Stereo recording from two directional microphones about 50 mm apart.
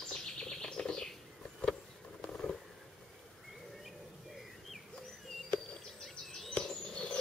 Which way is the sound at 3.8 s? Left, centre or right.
Centre.